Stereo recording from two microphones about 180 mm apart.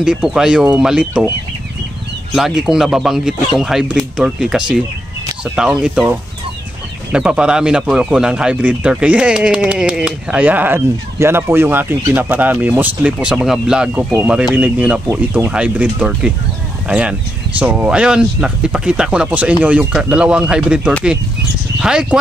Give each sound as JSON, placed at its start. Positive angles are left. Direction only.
{"t": 0.0, "sound": "speech", "side_deg": -5}
{"t": 2.3, "sound": "speech", "side_deg": -5}